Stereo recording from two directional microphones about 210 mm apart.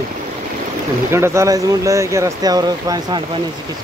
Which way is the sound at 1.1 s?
10° right (ahead or behind).